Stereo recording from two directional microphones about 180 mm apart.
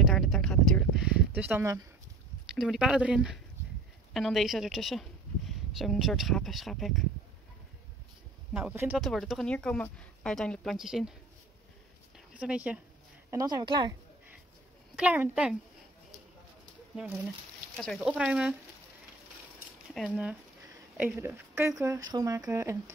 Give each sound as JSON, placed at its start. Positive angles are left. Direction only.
{"t": 0.0, "sound": "a sound", "side_deg": 0}
{"t": 2.5, "sound": "speech", "side_deg": 0}
{"t": 8.5, "sound": "speech", "side_deg": -10}
{"t": 12.4, "sound": "speech", "side_deg": -5}
{"t": 13.3, "sound": "a woman's voice", "side_deg": -20}
{"t": 15.0, "sound": "speech", "side_deg": -5}
{"t": 16.9, "sound": "speech", "side_deg": -10}
{"t": 17.7, "sound": "speech", "side_deg": 0}
{"t": 19.9, "sound": "speech", "side_deg": 0}
{"t": 21.0, "sound": "speech", "side_deg": -15}